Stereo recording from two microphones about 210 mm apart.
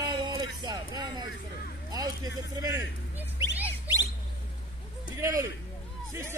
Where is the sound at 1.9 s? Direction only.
15° right (ahead or behind).